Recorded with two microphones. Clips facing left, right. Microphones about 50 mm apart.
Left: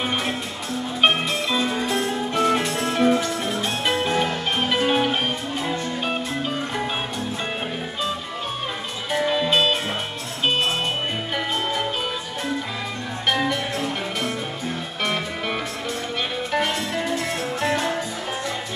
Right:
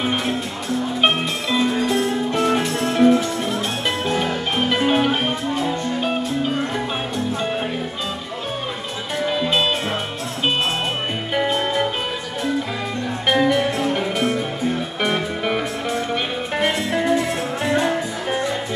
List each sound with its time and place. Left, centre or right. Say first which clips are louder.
1.9 s music: right 4 dB; centre
9.2 s music: even; centre
13.3 s music: right 5 dB; centre